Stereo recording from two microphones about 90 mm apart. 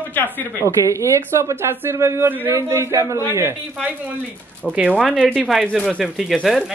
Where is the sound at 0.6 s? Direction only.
35° right (ahead or behind).